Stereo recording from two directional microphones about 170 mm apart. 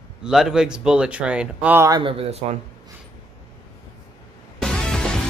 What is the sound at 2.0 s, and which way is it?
Speech, 35° right (ahead or behind).